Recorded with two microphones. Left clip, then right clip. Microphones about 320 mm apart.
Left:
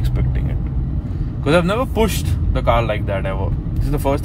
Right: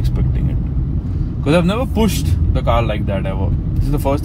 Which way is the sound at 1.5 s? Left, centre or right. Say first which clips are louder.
Even; left.